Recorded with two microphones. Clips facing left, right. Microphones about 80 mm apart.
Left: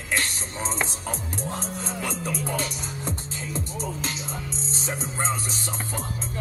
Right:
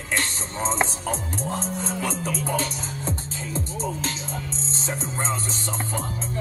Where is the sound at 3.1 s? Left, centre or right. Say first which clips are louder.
Right 2 dB; right.